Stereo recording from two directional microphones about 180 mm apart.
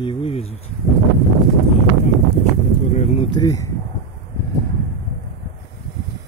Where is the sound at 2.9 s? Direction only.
40° left (ahead or behind).